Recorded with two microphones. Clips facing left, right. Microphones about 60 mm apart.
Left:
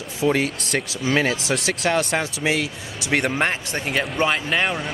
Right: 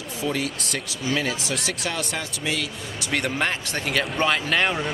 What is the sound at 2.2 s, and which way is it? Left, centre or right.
Speech, left.